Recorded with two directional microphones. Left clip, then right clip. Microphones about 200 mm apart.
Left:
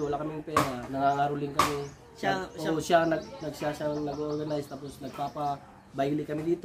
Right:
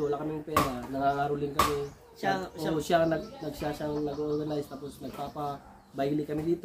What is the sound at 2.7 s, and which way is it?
A man's voice, 10° left (ahead or behind).